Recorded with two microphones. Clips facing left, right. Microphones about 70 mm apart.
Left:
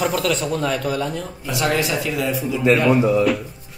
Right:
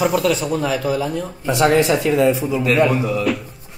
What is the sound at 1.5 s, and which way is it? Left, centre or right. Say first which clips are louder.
Speech: right 6 dB; right.